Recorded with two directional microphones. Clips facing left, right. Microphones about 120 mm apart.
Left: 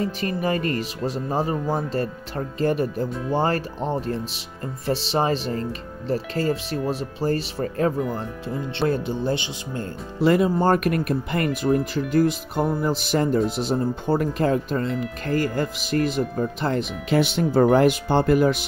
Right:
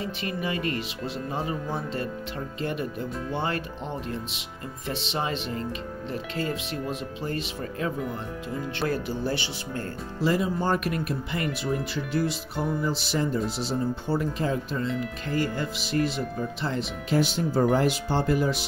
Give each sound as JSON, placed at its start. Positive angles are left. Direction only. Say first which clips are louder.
{"t": 0.0, "sound": "speech", "louder": "left 6 dB", "side_deg": 40}
{"t": 8.7, "sound": "speech", "louder": "left 6 dB", "side_deg": 25}
{"t": 10.2, "sound": "speech", "louder": "left 7 dB", "side_deg": 60}